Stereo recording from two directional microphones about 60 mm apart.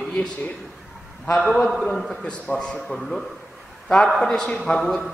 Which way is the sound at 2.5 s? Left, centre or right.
Centre.